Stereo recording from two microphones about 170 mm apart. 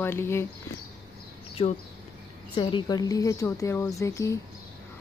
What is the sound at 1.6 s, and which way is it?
Speech, 35° left (ahead or behind).